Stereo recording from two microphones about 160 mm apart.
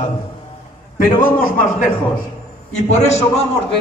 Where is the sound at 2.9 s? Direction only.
45° left (ahead or behind).